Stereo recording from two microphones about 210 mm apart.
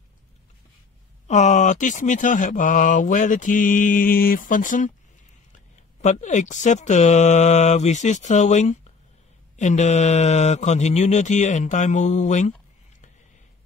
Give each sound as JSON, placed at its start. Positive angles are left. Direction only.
{"t": 1.2, "sound": "speech", "side_deg": 35}
{"t": 5.9, "sound": "speech", "side_deg": 35}